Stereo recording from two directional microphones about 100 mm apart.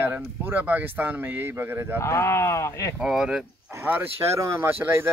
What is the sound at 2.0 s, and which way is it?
Speech, 25° left (ahead or behind).